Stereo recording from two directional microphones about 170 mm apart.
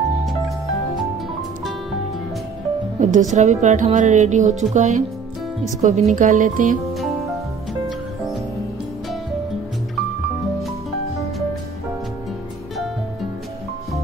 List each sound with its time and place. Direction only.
3.0 s speech: 45° right (ahead or behind)